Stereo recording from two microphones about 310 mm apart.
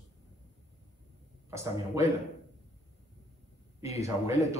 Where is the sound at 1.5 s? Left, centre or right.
Centre.